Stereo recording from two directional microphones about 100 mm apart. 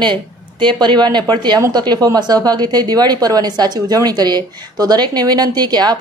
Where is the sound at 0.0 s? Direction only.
50° right (ahead or behind).